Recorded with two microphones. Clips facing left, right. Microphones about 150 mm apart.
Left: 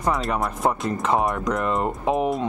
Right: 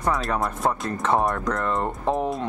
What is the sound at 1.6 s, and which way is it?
Speech, 15° left (ahead or behind).